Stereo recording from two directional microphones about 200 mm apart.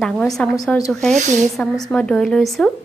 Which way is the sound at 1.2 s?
35° right (ahead or behind).